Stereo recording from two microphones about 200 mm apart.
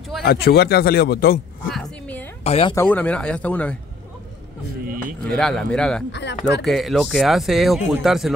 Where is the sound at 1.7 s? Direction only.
5° left (ahead or behind).